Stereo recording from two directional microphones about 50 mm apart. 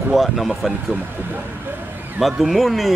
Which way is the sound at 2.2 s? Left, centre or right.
Centre.